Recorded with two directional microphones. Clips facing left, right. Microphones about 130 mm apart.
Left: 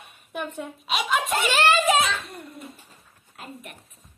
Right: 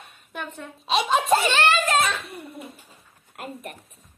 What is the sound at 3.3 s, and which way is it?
Speech, 50° right (ahead or behind).